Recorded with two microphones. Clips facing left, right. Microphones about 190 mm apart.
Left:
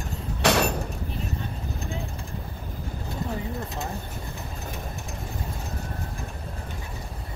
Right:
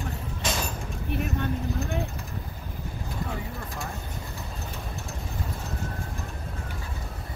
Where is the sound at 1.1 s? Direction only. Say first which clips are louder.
Right 4 dB; 65° right (ahead or behind).